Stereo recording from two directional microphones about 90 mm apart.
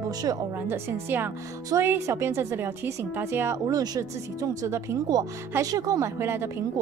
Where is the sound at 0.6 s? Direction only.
25° right (ahead or behind).